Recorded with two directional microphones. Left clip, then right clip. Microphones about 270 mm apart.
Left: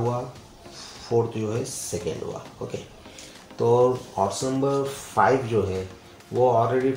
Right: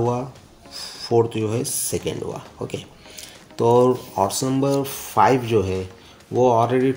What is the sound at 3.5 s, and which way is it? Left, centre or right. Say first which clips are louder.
Speech: right 3 dB; right.